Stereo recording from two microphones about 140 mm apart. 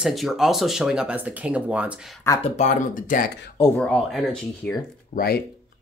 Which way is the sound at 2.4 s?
60° left (ahead or behind).